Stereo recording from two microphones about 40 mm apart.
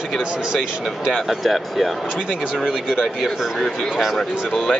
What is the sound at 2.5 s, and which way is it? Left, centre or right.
Speech, centre.